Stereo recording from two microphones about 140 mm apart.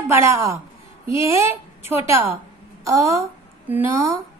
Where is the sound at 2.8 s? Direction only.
20° right (ahead or behind).